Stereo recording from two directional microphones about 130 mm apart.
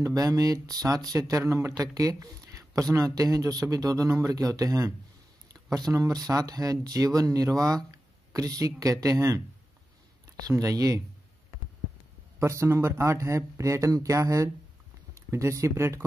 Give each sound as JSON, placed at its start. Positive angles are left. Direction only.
{"t": 0.0, "sound": "speech", "side_deg": -30}
{"t": 12.4, "sound": "speech", "side_deg": -20}